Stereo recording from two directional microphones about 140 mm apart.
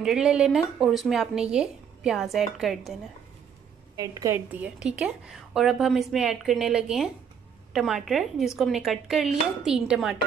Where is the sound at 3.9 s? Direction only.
25° right (ahead or behind).